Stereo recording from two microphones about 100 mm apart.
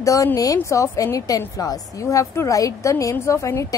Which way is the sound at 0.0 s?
35° left (ahead or behind).